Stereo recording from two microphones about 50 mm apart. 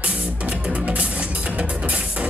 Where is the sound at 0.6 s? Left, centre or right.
Right.